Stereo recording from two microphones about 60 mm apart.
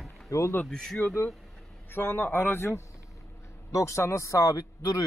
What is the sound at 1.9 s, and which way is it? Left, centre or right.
Speech, left.